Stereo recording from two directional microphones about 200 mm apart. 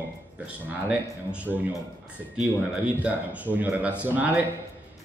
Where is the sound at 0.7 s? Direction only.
5° right (ahead or behind).